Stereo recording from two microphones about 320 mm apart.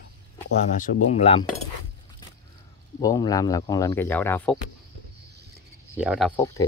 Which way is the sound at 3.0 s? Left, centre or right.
Centre.